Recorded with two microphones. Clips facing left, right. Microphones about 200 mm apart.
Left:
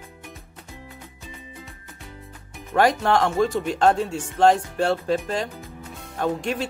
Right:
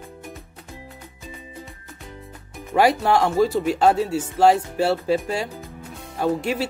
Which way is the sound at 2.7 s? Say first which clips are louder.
Right 1 dB; 10° right (ahead or behind).